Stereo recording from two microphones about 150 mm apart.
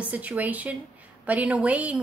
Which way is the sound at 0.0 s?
10° right (ahead or behind).